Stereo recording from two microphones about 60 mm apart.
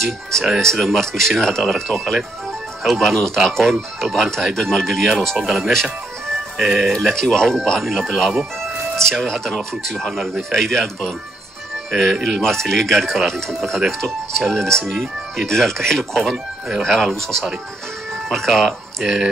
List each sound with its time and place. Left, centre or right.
0.0 s speech: centre
5.4 s speech: centre
5.7 s music: centre
6.5 s speech: centre
6.9 s speech: centre
18.3 s speech: centre